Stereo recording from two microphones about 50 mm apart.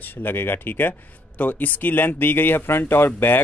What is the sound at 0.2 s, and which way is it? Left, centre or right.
Speech, left.